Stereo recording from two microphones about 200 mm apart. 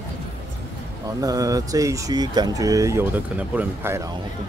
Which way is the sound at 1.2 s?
15° right (ahead or behind).